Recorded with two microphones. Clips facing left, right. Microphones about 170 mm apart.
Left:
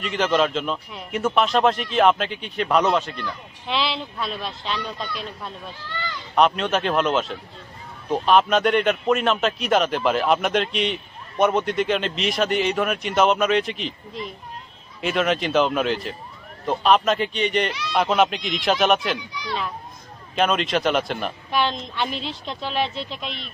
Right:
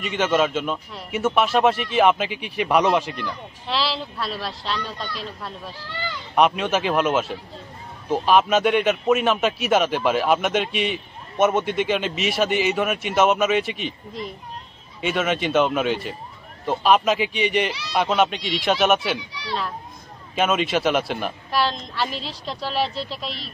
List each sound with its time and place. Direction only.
0.0 s a man's voice: 5° right (ahead or behind)
15.0 s a man's voice: centre (ahead or behind)
20.3 s a man's voice: 5° right (ahead or behind)
23.1 s speech: 35° right (ahead or behind)